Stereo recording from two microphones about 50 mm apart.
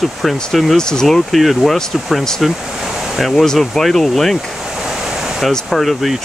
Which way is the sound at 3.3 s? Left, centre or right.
Centre.